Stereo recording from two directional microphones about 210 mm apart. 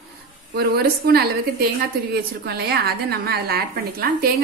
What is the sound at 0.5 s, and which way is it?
A woman's voice, 50° right (ahead or behind).